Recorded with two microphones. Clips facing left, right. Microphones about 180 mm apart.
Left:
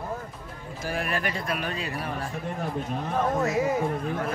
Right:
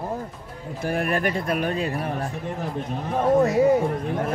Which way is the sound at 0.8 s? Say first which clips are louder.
Right 6 dB; 55° right (ahead or behind).